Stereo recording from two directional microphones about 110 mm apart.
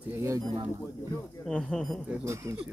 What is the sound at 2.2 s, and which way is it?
Speech, 25° right (ahead or behind).